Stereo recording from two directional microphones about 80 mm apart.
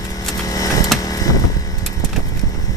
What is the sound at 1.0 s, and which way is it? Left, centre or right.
Vehicle, left.